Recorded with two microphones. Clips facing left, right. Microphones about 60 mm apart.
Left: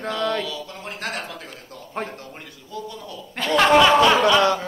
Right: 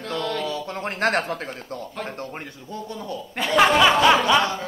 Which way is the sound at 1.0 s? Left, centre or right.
Right.